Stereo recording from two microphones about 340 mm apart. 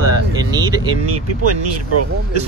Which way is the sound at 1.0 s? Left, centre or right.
Right.